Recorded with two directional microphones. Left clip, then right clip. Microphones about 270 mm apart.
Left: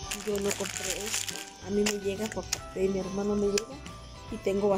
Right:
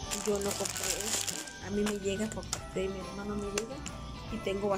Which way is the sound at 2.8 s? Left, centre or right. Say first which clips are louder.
Left 5 dB; centre.